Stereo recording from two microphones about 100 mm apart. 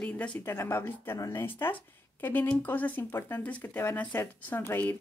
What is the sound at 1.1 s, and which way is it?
Speech, 35° left (ahead or behind).